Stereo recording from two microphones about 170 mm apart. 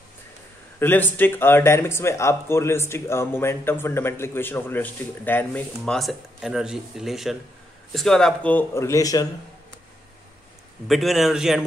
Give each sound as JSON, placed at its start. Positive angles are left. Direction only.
{"t": 0.7, "sound": "speech", "side_deg": 10}
{"t": 10.9, "sound": "a man's voice", "side_deg": 0}